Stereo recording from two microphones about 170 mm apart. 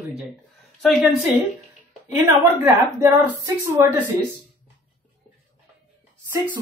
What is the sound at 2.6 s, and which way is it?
Speech, 15° right (ahead or behind).